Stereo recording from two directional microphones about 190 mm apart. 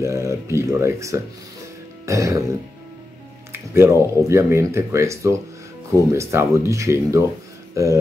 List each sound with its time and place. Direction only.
0.0 s speech: 15° right (ahead or behind)
3.7 s speech: 15° right (ahead or behind)
7.7 s a sound: 15° right (ahead or behind)